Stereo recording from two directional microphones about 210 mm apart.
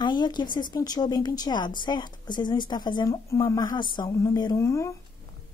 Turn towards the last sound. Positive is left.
turn(degrees=15)  # may be behind; listen again after turning